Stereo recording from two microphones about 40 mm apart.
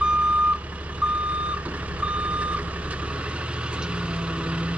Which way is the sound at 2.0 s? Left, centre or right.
Right.